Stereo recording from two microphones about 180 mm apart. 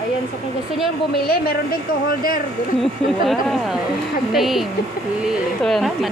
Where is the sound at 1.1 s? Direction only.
55° left (ahead or behind).